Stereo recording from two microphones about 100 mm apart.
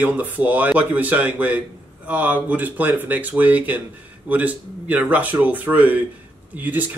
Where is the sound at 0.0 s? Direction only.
15° right (ahead or behind).